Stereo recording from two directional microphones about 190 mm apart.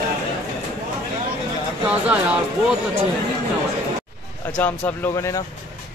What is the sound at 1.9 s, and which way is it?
Speech, 5° right (ahead or behind).